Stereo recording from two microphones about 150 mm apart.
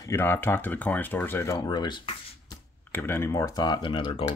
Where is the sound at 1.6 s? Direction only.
30° left (ahead or behind).